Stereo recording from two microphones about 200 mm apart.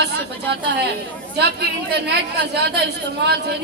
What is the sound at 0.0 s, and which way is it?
A woman's voice, 55° right (ahead or behind).